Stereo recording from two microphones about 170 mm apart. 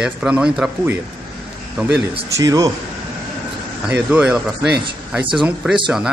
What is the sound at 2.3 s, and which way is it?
Speech, 20° right (ahead or behind).